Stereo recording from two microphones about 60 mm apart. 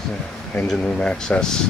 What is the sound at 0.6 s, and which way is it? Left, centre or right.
Speech, centre.